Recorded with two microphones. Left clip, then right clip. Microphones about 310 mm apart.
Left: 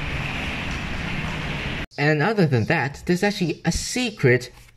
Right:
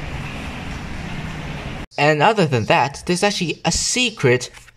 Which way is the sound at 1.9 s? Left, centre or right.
Centre.